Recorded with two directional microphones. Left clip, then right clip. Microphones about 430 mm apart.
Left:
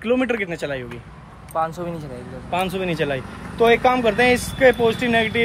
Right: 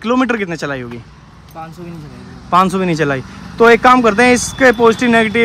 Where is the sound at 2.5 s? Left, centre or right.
Centre.